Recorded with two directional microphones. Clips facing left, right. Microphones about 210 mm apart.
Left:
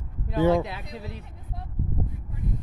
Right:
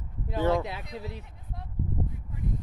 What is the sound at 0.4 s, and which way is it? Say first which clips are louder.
Speech: left 5 dB; 10° left (ahead or behind).